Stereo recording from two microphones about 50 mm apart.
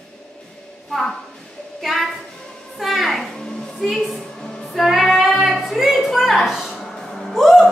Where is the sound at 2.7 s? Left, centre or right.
Centre.